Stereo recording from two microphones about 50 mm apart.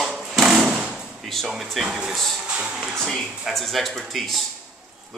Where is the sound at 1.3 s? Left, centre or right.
Centre.